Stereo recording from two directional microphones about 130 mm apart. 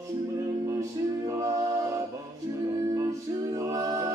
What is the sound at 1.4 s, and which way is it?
Music, 25° right (ahead or behind).